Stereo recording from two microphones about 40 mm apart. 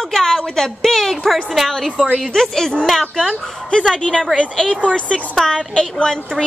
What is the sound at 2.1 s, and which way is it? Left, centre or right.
Speech, centre.